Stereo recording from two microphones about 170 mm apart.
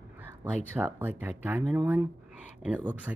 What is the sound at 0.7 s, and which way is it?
Speech, 10° right (ahead or behind).